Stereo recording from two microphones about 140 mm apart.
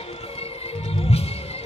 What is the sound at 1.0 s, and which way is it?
Music, 45° left (ahead or behind).